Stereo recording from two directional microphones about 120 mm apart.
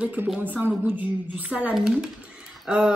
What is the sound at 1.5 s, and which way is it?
Speech, 5° right (ahead or behind).